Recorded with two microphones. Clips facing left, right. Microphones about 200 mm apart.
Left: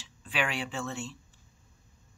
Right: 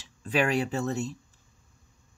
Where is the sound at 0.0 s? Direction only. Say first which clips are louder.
Right 7 dB; 40° right (ahead or behind).